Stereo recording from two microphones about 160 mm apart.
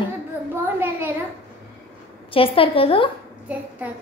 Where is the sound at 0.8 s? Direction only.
15° right (ahead or behind).